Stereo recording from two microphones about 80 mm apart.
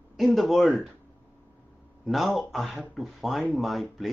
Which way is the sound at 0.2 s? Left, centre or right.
Centre.